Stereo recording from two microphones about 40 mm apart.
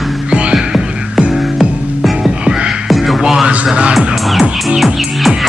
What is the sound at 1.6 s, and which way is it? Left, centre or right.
Music, centre.